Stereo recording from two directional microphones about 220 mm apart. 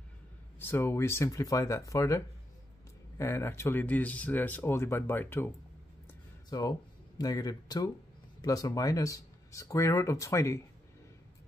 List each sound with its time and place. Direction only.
0.6 s speech: 10° left (ahead or behind)
6.5 s speech: 15° left (ahead or behind)